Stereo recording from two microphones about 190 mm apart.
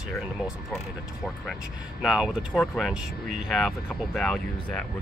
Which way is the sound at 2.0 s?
Centre (ahead or behind).